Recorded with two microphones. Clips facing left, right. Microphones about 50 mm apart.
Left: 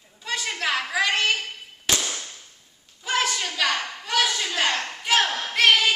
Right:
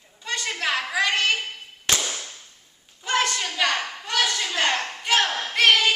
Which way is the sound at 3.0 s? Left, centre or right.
Centre.